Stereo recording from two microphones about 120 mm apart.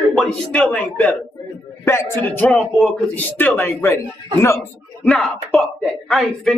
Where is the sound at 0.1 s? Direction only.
10° left (ahead or behind).